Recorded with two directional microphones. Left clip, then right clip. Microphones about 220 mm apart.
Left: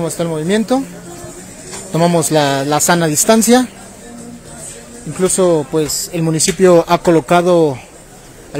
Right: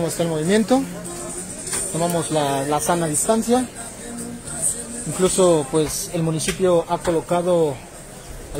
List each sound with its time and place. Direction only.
0.0 s speech: 15° left (ahead or behind)
2.0 s speech: 35° left (ahead or behind)
5.1 s speech: 20° left (ahead or behind)
6.3 s speech: 40° left (ahead or behind)